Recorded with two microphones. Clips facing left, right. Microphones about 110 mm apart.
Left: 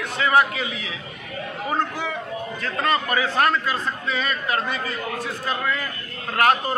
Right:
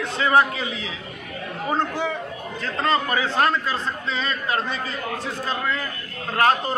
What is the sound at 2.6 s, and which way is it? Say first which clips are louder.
Speech: right 1 dB; 25° right (ahead or behind).